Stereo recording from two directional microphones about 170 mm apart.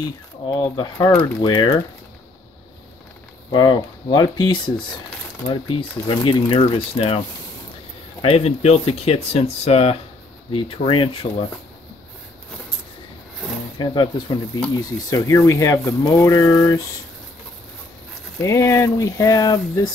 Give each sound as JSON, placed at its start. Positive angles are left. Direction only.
{"t": 0.6, "sound": "speech", "side_deg": 25}
{"t": 3.5, "sound": "speech", "side_deg": 25}
{"t": 8.2, "sound": "speech", "side_deg": 35}
{"t": 13.7, "sound": "speech", "side_deg": 25}
{"t": 18.4, "sound": "speech", "side_deg": 15}